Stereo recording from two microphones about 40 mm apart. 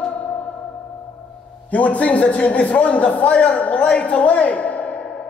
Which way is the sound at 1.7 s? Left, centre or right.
Left.